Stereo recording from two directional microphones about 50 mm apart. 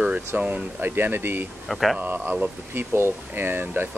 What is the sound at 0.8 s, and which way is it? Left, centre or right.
Speech, right.